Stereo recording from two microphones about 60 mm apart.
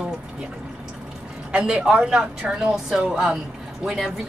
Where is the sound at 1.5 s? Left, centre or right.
Centre.